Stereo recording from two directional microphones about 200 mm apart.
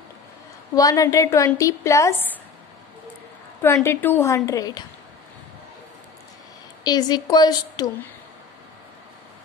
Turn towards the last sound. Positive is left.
turn(degrees=20)  # may be behind; listen again after turning